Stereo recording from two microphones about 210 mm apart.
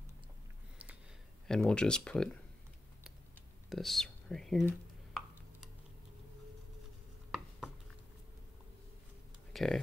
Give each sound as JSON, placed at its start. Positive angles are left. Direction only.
{"t": 1.5, "sound": "speech", "side_deg": 5}
{"t": 3.7, "sound": "whispering", "side_deg": 0}
{"t": 7.2, "sound": "chopping", "side_deg": 0}
{"t": 9.5, "sound": "a sound", "side_deg": 0}